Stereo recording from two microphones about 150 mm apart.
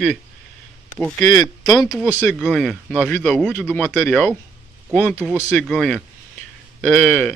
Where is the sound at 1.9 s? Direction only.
10° right (ahead or behind).